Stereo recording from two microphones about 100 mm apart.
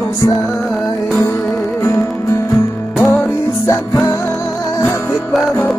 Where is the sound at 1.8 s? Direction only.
30° left (ahead or behind).